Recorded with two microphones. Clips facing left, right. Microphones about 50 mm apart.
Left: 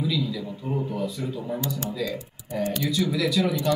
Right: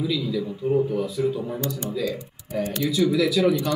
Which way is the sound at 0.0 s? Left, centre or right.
Centre.